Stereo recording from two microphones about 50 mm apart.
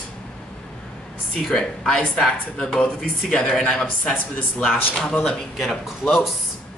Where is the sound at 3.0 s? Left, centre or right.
Centre.